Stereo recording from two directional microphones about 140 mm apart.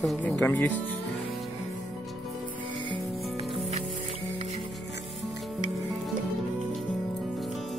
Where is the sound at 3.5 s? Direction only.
45° right (ahead or behind).